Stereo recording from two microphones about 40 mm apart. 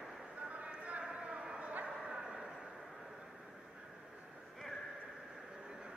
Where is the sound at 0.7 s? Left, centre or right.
Right.